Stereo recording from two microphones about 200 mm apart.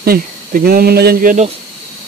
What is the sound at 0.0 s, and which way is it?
Speech, 45° right (ahead or behind).